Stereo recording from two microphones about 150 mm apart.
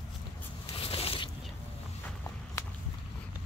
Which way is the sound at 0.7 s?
40° left (ahead or behind).